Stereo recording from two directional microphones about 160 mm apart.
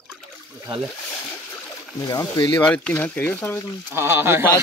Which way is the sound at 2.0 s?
20° left (ahead or behind).